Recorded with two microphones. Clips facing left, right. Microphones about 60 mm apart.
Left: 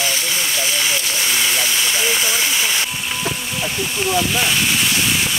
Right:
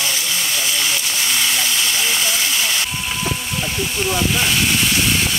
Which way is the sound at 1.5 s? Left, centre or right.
Centre.